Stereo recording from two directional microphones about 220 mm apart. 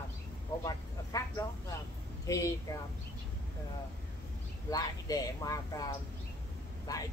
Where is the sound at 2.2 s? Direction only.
15° left (ahead or behind).